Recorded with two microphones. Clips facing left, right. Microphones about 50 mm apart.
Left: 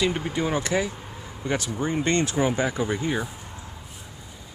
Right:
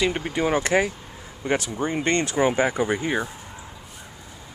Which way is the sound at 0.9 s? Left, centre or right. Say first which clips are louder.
Left 2 dB; centre.